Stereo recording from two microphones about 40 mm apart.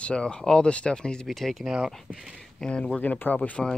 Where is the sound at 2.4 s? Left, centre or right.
Left.